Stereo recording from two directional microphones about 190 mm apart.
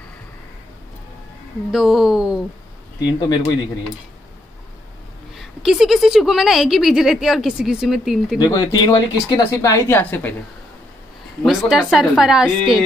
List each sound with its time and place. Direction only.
1.7 s a woman's voice: centre (ahead or behind)
3.0 s speech: 20° left (ahead or behind)
5.3 s a woman's voice: centre (ahead or behind)
8.4 s speech: 20° left (ahead or behind)
11.4 s a woman's voice: 5° right (ahead or behind)